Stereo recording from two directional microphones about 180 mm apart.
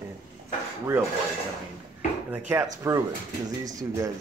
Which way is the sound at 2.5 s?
15° right (ahead or behind).